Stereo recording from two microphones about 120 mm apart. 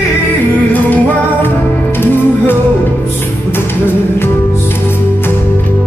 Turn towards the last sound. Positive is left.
turn(degrees=20)  # may be behind; listen again after turning